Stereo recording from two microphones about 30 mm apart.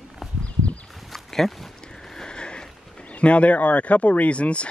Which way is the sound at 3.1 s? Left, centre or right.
Left.